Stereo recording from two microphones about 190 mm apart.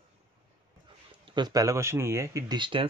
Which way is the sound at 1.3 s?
20° right (ahead or behind).